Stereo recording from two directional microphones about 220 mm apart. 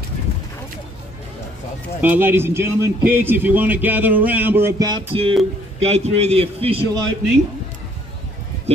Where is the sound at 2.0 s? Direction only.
10° right (ahead or behind); by 6.8 s 25° right (ahead or behind).